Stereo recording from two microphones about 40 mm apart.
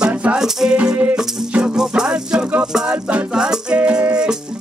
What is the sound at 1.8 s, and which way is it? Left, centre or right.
Rattle, centre.